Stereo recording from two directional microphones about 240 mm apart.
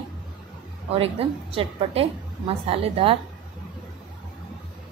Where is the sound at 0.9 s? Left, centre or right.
Right.